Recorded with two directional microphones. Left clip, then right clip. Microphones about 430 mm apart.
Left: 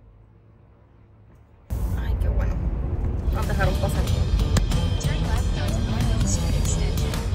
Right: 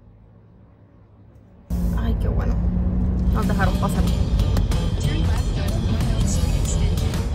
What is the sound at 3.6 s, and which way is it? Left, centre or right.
Music, centre.